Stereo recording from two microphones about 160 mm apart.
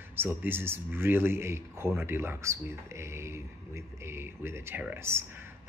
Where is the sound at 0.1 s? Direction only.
15° right (ahead or behind).